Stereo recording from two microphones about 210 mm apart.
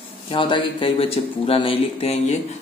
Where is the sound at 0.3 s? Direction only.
25° left (ahead or behind).